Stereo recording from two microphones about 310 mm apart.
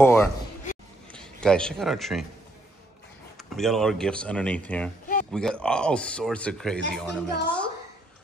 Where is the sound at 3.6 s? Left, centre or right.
Centre.